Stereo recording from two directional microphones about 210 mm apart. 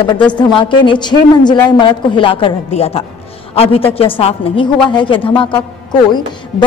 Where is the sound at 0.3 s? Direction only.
20° left (ahead or behind).